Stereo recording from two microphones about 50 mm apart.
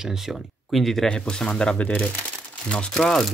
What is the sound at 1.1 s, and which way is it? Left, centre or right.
Speech, centre.